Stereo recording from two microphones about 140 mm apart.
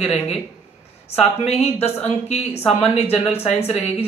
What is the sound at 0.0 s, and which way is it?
Speech, 50° left (ahead or behind).